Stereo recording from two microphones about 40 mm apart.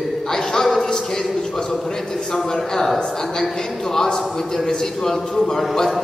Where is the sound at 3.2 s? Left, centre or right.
Centre.